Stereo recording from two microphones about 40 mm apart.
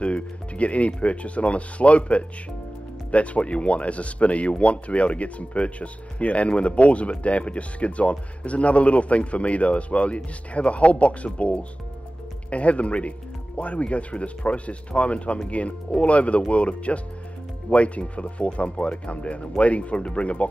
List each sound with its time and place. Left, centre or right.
0.0 s speech: left